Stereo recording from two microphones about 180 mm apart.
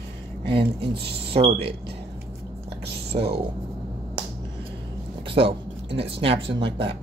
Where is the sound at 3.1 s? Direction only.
35° right (ahead or behind).